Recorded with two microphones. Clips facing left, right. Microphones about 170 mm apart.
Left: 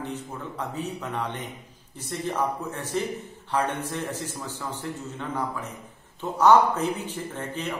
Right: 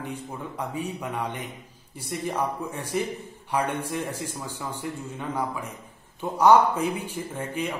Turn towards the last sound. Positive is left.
turn(degrees=-10)  # may be behind; listen again after turning